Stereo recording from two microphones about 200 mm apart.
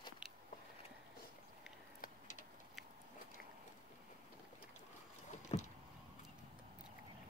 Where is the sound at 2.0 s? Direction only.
40° left (ahead or behind).